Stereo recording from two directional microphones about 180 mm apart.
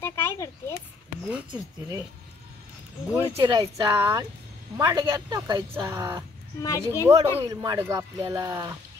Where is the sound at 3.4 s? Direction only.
25° right (ahead or behind).